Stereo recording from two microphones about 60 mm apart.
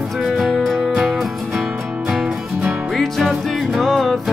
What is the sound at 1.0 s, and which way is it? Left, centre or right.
Music, centre.